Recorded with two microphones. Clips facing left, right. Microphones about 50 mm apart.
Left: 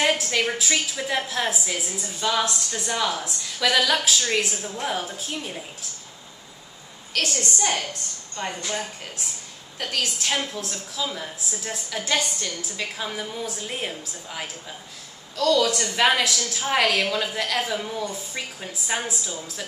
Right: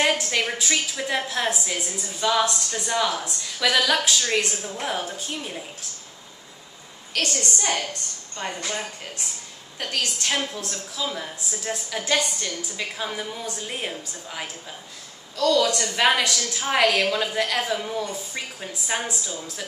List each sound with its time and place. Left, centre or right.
0.0 s a woman's voice: centre
7.2 s a woman's voice: centre
9.8 s a woman's voice: centre